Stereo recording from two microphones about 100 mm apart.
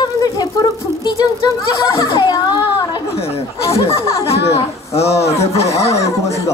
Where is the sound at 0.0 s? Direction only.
45° left (ahead or behind).